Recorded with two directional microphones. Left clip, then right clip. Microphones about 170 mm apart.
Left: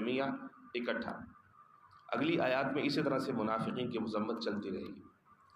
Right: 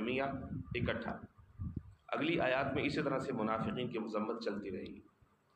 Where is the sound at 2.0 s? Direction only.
25° left (ahead or behind).